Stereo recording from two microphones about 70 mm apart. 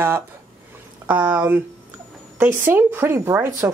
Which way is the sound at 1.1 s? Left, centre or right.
Right.